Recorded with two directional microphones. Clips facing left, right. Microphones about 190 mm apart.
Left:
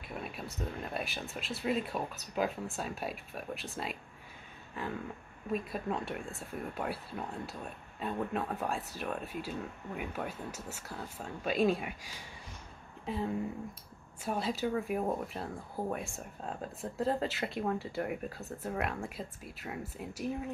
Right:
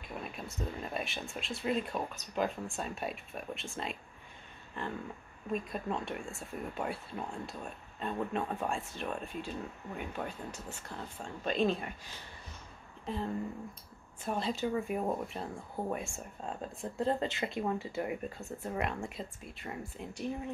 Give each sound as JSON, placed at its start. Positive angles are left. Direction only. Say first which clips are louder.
{"t": 0.1, "sound": "speech", "louder": "left 1 dB", "side_deg": 5}